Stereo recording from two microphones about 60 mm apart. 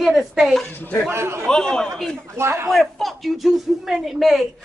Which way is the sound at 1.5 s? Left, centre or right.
Centre.